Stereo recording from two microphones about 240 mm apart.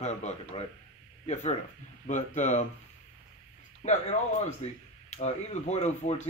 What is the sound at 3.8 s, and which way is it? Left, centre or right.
Speech, left.